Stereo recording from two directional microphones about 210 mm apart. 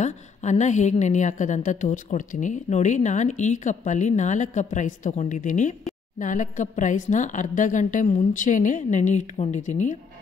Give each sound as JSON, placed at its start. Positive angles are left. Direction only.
{"t": 0.0, "sound": "a woman's voice", "side_deg": 35}